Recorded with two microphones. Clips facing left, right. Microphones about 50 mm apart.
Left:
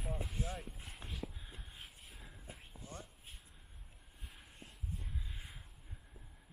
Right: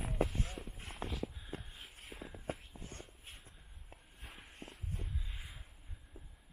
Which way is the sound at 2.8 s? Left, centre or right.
Right.